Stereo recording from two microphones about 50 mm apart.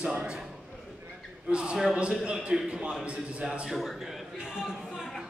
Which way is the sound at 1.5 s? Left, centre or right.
Centre.